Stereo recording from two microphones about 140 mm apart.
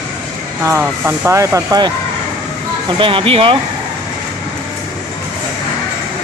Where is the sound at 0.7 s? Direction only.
15° right (ahead or behind).